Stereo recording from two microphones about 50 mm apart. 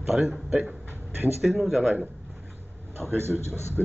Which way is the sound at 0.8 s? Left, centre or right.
Right.